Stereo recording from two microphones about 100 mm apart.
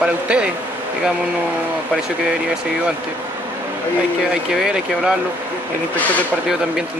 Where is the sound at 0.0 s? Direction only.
10° right (ahead or behind).